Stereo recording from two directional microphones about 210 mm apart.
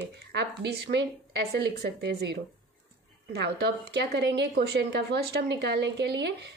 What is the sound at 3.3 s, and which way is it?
A woman's voice, 50° right (ahead or behind).